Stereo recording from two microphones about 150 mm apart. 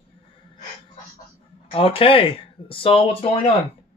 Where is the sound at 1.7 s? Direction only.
40° left (ahead or behind).